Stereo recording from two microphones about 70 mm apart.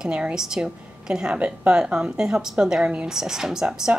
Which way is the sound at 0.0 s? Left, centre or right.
Centre.